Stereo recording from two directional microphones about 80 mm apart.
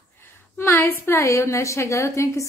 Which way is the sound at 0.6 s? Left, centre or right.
Left.